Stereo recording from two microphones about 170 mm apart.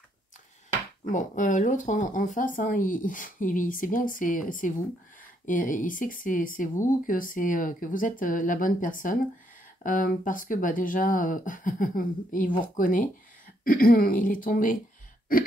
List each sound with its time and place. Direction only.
1.1 s speech: 50° left (ahead or behind)